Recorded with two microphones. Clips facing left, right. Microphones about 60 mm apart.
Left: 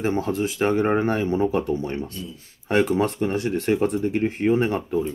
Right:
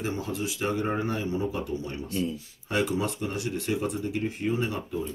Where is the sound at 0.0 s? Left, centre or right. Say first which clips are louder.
Left 8 dB; left.